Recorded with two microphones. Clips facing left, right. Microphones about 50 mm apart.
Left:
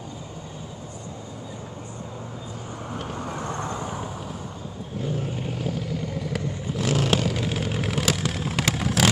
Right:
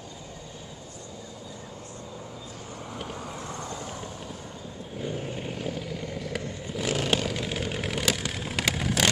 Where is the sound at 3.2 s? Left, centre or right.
Left.